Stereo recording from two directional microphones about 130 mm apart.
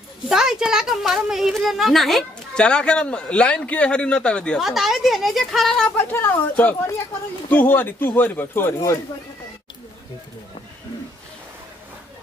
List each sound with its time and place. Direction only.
0.3 s a woman's voice: 5° right (ahead or behind)
5.9 s speech: 15° left (ahead or behind)